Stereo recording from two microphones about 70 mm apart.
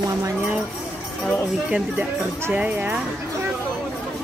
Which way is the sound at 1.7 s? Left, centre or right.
Centre.